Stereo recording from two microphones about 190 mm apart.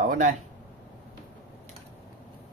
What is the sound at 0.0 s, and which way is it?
Speech, 45° right (ahead or behind).